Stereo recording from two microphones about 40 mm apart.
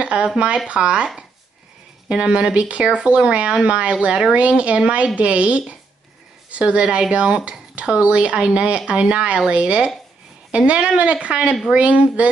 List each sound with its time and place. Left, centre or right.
0.0 s a sound: right
0.7 s speech: right
2.0 s speech: right